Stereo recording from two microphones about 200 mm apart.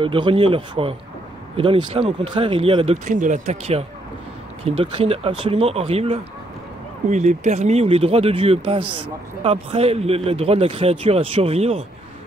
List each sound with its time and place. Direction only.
0.0 s speech: 25° right (ahead or behind)